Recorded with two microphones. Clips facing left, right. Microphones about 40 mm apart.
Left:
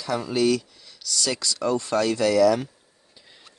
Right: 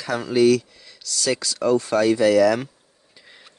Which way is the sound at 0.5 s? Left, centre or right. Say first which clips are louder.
Right 5 dB; centre.